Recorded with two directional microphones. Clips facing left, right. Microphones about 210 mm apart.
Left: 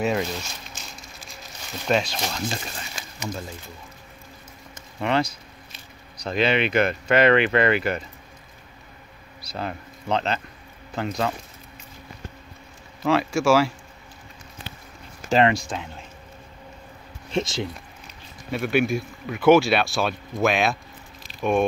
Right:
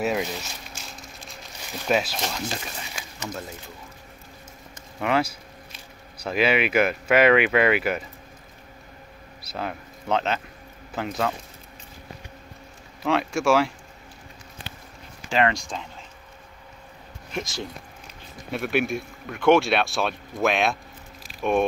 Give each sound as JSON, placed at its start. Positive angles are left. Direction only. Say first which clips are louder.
{"t": 0.0, "sound": "speech", "louder": "left 1 dB", "side_deg": -5}
{"t": 1.9, "sound": "speech", "louder": "left 1 dB", "side_deg": -5}
{"t": 5.0, "sound": "speech", "louder": "even", "side_deg": -5}
{"t": 9.5, "sound": "speech", "louder": "even", "side_deg": -5}
{"t": 13.0, "sound": "speech", "louder": "left 2 dB", "side_deg": 0}
{"t": 15.7, "sound": "speech", "louder": "left 3 dB", "side_deg": 5}
{"t": 17.3, "sound": "speech", "louder": "left 6 dB", "side_deg": 25}
{"t": 18.5, "sound": "speech", "louder": "left 3 dB", "side_deg": 0}